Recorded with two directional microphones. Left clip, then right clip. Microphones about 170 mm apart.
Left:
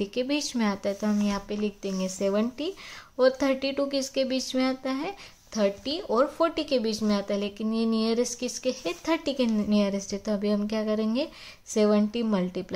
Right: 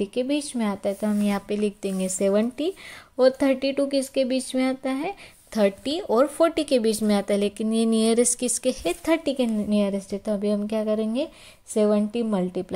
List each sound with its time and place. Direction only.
0.0 s speech: 15° right (ahead or behind)
1.2 s speech: 35° right (ahead or behind)
5.5 s speech: 35° right (ahead or behind); by 12.6 s 15° right (ahead or behind)